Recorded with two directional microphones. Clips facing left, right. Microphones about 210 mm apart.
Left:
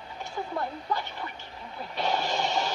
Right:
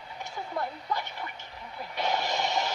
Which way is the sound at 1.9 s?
15° right (ahead or behind).